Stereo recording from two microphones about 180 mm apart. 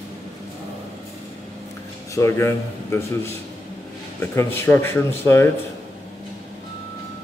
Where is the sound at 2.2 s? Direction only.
15° left (ahead or behind).